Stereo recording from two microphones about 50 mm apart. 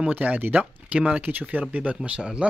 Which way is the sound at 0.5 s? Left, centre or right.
Centre.